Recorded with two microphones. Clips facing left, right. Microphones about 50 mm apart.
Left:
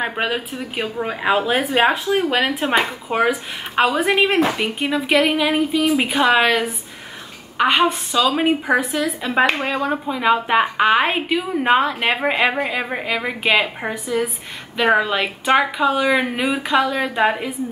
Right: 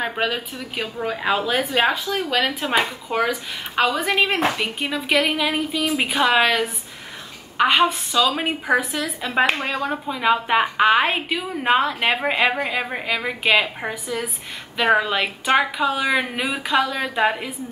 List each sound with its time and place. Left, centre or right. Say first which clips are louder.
0.0 s a woman's voice: left 2 dB; centre